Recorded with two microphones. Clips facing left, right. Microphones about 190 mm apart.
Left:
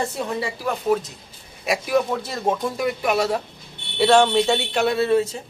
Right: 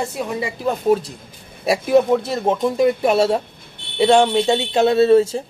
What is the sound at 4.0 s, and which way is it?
Speech, 15° right (ahead or behind).